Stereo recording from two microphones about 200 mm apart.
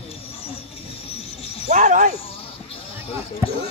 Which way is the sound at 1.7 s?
35° right (ahead or behind).